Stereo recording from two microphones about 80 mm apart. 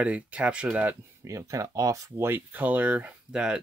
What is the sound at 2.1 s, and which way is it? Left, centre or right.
Speech, right.